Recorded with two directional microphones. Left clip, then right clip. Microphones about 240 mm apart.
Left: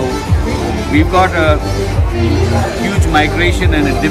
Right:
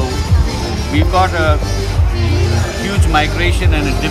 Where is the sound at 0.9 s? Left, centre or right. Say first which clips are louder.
Left 3 dB; centre.